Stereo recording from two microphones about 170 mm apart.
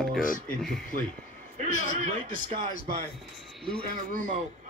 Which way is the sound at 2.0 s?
40° right (ahead or behind).